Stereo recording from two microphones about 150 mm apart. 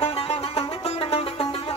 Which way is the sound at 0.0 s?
40° left (ahead or behind).